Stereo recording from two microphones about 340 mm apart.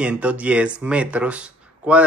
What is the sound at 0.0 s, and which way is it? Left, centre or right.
Speech, centre.